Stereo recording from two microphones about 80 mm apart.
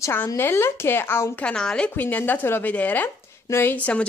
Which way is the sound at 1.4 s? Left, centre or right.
Centre.